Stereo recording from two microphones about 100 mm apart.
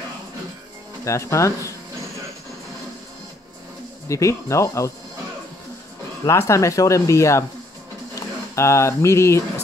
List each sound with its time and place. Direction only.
1.0 s speech: 30° left (ahead or behind)
4.1 s speech: 30° left (ahead or behind)
6.2 s speech: 30° left (ahead or behind)